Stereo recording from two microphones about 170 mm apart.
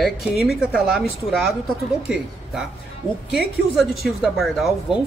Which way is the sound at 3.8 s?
Centre (ahead or behind).